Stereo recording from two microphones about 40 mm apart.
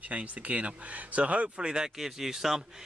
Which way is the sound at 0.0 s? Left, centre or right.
Right.